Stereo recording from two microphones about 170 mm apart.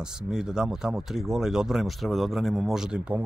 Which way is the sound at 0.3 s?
5° right (ahead or behind).